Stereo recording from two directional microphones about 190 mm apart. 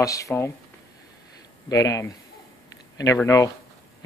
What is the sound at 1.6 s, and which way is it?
Speech, 15° left (ahead or behind).